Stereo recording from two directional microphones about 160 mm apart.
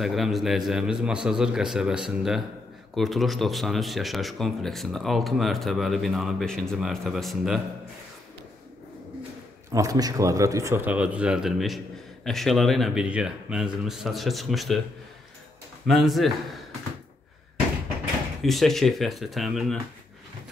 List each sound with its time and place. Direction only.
0.0 s speech: centre (ahead or behind)
9.7 s speech: 20° right (ahead or behind); by 14.8 s centre (ahead or behind)
15.9 s speech: centre (ahead or behind)
18.4 s speech: centre (ahead or behind)